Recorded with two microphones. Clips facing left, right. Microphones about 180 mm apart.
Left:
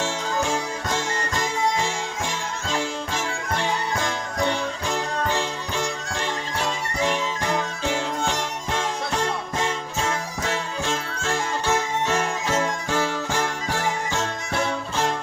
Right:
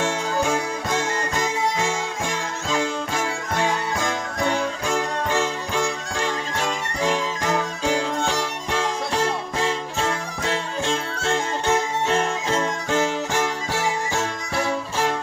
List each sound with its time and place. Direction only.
0.0 s music: 55° right (ahead or behind)
10.8 s music: 25° right (ahead or behind)